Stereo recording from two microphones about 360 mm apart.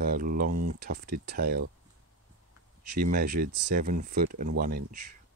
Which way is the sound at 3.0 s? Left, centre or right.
Right.